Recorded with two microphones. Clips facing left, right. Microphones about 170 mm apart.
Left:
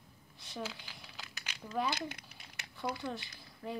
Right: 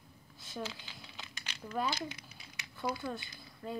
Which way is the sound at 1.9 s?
60° left (ahead or behind).